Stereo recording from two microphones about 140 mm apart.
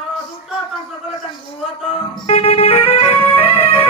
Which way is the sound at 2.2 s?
45° left (ahead or behind).